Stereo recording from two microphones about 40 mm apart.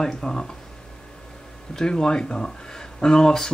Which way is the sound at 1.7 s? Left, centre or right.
Centre.